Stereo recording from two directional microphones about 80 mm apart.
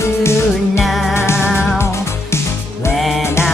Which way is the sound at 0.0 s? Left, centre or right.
Left.